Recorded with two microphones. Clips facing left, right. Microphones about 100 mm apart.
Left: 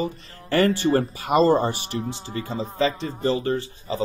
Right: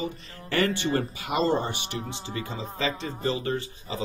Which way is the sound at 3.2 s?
35° left (ahead or behind).